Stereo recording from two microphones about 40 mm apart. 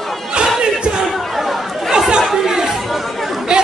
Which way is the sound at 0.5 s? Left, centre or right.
Right.